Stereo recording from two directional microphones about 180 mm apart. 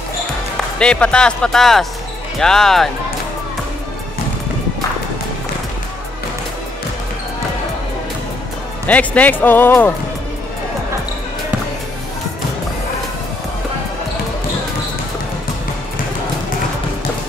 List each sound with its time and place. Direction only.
0.7 s speech: 5° left (ahead or behind)
8.8 s speech: 10° left (ahead or behind)